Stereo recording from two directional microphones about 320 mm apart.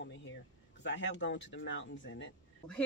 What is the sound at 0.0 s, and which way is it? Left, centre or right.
Speech, left.